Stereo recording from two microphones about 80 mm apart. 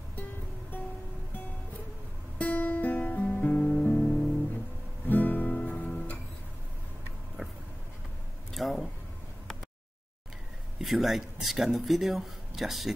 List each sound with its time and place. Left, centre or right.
2.3 s music: centre
5.0 s guitar: left
8.5 s a sound: centre
10.8 s speech: centre